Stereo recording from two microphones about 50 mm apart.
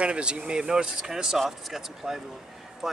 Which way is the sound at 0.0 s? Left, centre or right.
Right.